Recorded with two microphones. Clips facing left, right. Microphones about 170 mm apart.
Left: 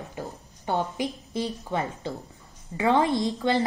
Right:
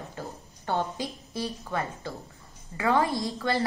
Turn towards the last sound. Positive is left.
turn(degrees=20)  # may be behind; listen again after turning